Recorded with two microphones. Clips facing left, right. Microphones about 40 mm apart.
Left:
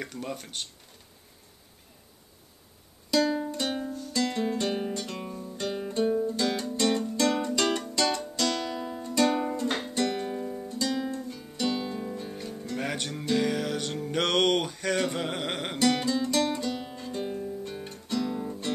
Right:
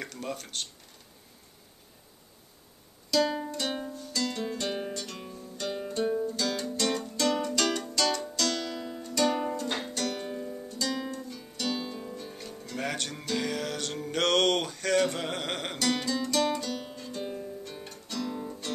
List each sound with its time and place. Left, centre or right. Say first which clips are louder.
0.0 s speech: left 1 dB; centre
3.2 s music: left 1 dB; centre
4.1 s music: left 4 dB; left
4.6 s music: left 3 dB; centre
4.9 s music: left 4 dB; centre
6.2 s music: left 3 dB; left
17.2 s music: left 3 dB; centre
17.8 s music: left 5 dB; left
18.3 s music: left 3 dB; centre